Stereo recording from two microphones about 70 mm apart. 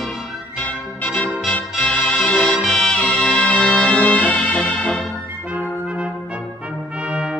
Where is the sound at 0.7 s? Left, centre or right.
Centre.